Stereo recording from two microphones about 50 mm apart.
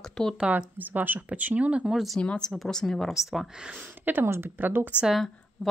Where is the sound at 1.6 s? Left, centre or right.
Right.